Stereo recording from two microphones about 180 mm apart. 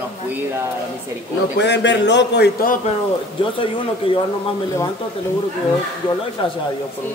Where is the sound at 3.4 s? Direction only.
30° left (ahead or behind).